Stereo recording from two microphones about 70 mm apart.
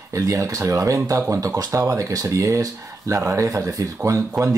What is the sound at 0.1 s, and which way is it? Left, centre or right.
Speech, right.